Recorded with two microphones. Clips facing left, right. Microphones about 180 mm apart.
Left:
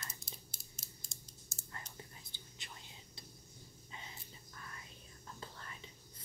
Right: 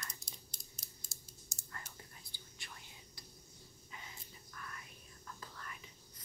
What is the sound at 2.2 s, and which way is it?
Whispering, 20° left (ahead or behind).